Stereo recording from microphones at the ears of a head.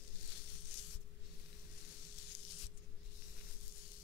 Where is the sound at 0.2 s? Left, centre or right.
Left.